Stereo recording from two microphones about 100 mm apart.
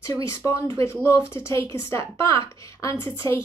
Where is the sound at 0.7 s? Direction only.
25° left (ahead or behind).